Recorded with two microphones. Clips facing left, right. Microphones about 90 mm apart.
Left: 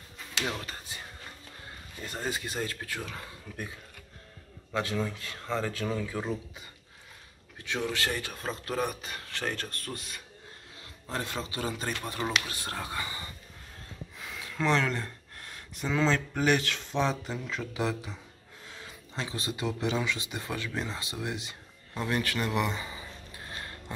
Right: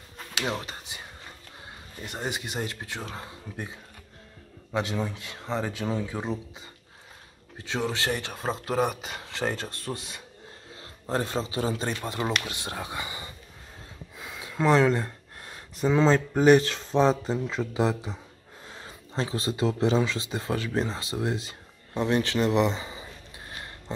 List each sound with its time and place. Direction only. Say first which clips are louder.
0.5 s speech: right 4 dB; 20° right (ahead or behind)
2.0 s speech: right 1 dB; 20° right (ahead or behind)
4.7 s speech: right 2 dB; 20° right (ahead or behind)
7.5 s a man's voice: right 3 dB; 25° right (ahead or behind)
14.1 s a sound: right 3 dB; 20° right (ahead or behind)
14.6 s speech: right 6 dB; 30° right (ahead or behind)